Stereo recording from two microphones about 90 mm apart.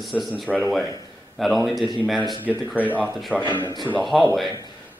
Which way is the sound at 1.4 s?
Centre (ahead or behind).